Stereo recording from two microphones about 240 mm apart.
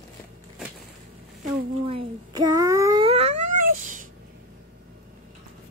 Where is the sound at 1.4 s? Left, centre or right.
Right.